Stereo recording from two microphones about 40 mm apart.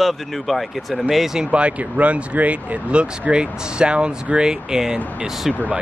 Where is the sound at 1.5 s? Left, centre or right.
Right; by 4.9 s centre.